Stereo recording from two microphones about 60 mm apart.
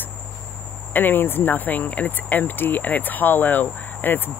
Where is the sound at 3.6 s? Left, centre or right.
Centre.